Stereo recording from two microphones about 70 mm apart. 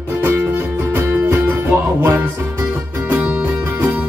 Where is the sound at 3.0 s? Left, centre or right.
Right.